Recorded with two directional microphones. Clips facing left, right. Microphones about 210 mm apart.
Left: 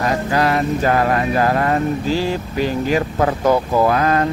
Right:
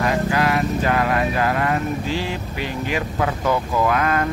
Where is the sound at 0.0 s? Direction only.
40° left (ahead or behind).